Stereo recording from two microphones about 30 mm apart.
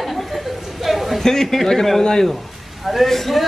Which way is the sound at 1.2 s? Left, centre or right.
Centre.